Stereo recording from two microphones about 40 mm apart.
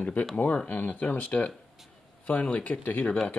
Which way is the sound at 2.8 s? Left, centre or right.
Left.